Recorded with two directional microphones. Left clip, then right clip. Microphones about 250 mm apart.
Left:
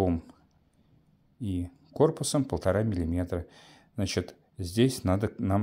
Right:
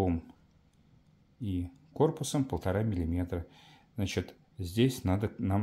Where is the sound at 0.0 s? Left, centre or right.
Left.